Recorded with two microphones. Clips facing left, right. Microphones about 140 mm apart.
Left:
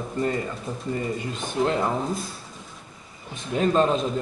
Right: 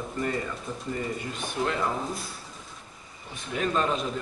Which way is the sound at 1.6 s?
30° left (ahead or behind).